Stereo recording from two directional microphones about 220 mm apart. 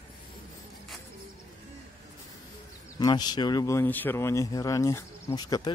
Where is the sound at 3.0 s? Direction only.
20° left (ahead or behind).